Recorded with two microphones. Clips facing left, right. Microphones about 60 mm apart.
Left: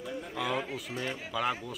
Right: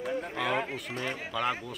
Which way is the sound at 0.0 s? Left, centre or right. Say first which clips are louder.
Right 5 dB; right.